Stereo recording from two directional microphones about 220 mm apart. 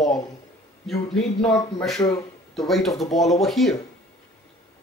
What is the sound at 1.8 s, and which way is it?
Speech, 5° left (ahead or behind).